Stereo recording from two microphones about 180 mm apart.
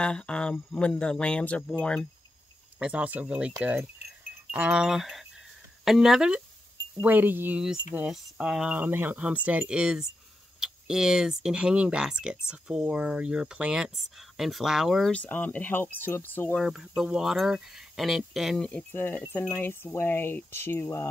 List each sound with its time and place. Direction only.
0.0 s speech: 5° left (ahead or behind)
2.8 s speech: 5° right (ahead or behind); by 16.6 s 10° left (ahead or behind)
16.6 s speech: 5° right (ahead or behind); by 21.1 s 15° left (ahead or behind)